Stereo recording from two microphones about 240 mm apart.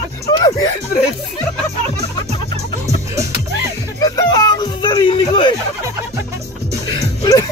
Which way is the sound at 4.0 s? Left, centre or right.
Centre.